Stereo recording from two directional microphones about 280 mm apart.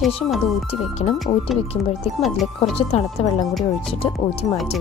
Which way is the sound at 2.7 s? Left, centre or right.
Left.